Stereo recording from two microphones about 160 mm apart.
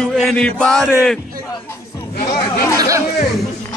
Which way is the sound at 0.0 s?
Centre (ahead or behind).